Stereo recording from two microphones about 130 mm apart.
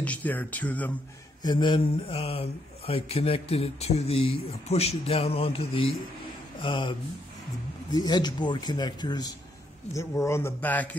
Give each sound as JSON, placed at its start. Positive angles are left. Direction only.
{"t": 0.0, "sound": "speech", "side_deg": 10}
{"t": 1.4, "sound": "a man's voice", "side_deg": 35}